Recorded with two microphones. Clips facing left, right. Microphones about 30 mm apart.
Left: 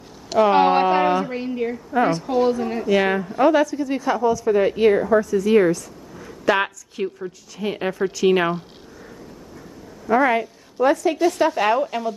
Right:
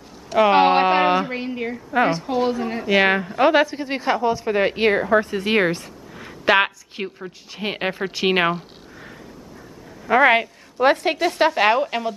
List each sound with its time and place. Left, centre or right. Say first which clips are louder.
0.5 s a woman's voice: right 1 dB; right
2.9 s a woman's voice: right 2 dB; right
10.0 s a woman's voice: right 3 dB; right